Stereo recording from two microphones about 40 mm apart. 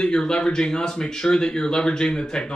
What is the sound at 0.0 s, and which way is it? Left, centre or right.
Speech, centre.